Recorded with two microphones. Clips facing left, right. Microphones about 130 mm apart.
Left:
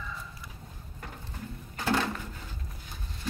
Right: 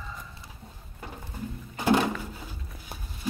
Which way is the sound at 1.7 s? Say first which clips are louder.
Right 5 dB; 15° right (ahead or behind).